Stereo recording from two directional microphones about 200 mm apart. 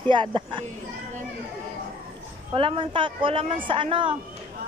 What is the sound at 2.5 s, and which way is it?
Speech, 25° right (ahead or behind).